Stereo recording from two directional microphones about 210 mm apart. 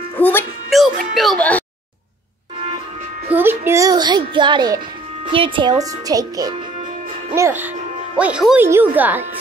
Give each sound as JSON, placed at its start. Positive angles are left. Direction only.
{"t": 0.2, "sound": "speech", "side_deg": 10}
{"t": 0.7, "sound": "music", "side_deg": 0}
{"t": 1.1, "sound": "speech", "side_deg": 0}
{"t": 3.3, "sound": "a child's voice", "side_deg": -10}